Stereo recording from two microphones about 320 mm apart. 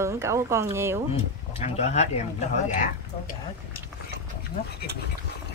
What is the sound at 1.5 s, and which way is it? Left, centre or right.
Speech, centre.